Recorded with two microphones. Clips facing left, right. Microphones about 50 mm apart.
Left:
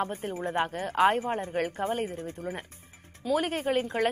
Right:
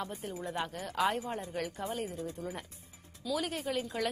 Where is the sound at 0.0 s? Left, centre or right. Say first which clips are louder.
Left 7 dB; left.